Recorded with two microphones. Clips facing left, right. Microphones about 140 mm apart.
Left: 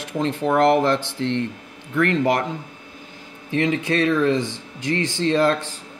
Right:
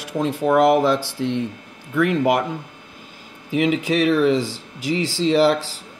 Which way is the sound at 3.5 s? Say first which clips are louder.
Right 2 dB; 10° right (ahead or behind).